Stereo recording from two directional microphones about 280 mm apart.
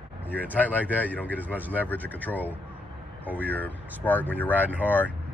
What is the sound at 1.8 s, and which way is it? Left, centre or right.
Speech, centre.